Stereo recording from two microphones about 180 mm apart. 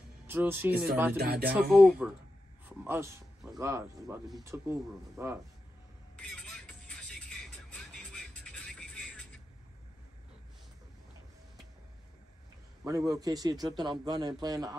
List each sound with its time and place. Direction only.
0.3 s speech: 10° right (ahead or behind)
1.1 s music: 60° right (ahead or behind)
1.5 s speech: 5° right (ahead or behind)
6.1 s music: 5° left (ahead or behind)
12.8 s a man's voice: 20° right (ahead or behind)